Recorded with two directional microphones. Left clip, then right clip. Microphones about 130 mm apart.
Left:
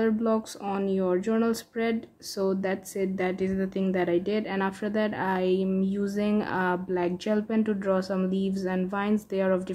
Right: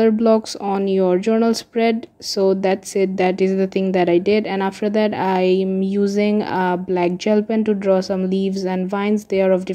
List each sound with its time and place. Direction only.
0.0 s a woman's voice: 40° right (ahead or behind)